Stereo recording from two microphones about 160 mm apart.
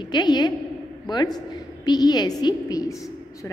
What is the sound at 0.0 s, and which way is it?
A woman's voice, 25° left (ahead or behind).